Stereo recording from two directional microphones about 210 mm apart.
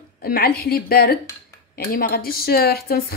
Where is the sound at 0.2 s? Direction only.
45° left (ahead or behind).